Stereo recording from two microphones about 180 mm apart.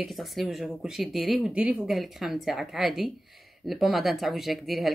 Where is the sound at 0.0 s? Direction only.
Centre (ahead or behind).